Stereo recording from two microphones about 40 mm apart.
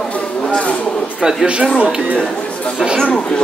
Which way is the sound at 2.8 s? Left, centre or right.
Centre.